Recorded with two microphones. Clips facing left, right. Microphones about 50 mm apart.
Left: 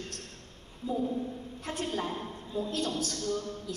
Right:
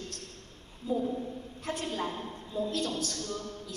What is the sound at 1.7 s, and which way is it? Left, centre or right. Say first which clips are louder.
A woman's voice: even; left.